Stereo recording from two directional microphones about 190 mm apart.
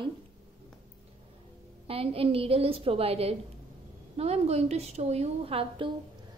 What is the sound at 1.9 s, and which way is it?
A woman's voice, 30° right (ahead or behind).